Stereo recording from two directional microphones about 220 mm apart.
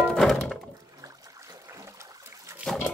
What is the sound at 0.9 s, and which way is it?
Trickle, 15° right (ahead or behind).